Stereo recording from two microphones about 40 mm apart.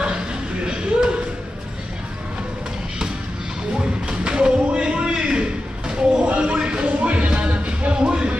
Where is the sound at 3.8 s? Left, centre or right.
Right.